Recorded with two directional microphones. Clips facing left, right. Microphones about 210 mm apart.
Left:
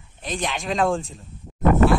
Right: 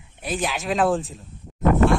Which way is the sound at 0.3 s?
5° right (ahead or behind).